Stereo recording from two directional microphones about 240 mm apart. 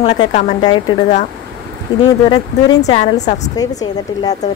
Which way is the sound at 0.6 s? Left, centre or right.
Centre.